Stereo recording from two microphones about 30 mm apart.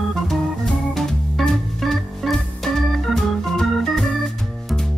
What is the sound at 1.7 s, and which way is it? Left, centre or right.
Music, centre.